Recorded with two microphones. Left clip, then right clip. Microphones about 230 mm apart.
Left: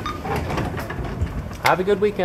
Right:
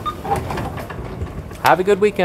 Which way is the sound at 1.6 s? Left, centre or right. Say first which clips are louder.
Right 4 dB; right.